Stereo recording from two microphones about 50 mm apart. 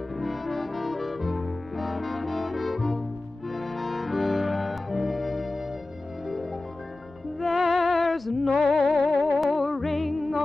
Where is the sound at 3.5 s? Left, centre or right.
Centre.